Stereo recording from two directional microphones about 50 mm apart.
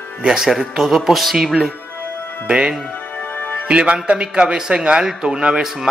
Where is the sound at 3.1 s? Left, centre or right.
Left.